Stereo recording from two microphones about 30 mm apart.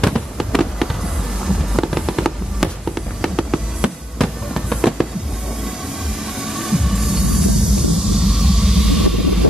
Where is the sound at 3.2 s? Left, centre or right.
Centre.